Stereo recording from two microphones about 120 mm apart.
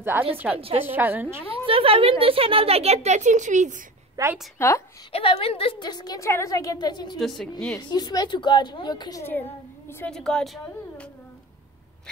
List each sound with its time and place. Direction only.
0.0 s a woman's voice: 20° right (ahead or behind)
0.6 s a woman's voice: 50° right (ahead or behind)
0.8 s a woman's voice: 15° right (ahead or behind)
1.5 s speech: 50° right (ahead or behind); by 3.8 s 90° right
4.2 s a woman's voice: 30° right (ahead or behind)
4.6 s a woman's voice: 25° left (ahead or behind)
5.1 s a woman's voice: 50° left (ahead or behind)
7.2 s a woman's voice: centre (ahead or behind)
7.9 s a woman's voice: 35° left (ahead or behind)
9.2 s a child's voice: 20° left (ahead or behind)
10.1 s speech: 5° left (ahead or behind)